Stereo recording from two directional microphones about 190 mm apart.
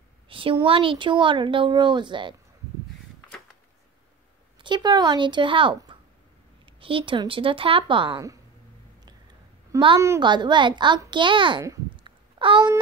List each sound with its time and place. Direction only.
0.3 s speech: 25° right (ahead or behind)
4.6 s speech: 25° right (ahead or behind)
9.7 s a woman's voice: 20° right (ahead or behind)